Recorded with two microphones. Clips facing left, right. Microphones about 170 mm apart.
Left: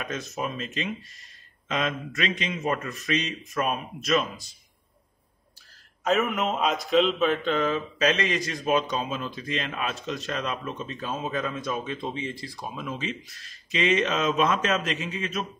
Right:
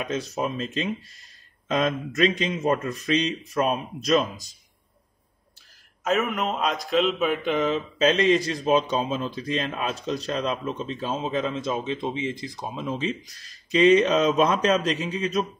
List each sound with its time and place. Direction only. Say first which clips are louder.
0.0 s a man's voice: right 4 dB; 30° right (ahead or behind)
6.0 s speech: even; centre (ahead or behind); by 15.2 s 35° right (ahead or behind)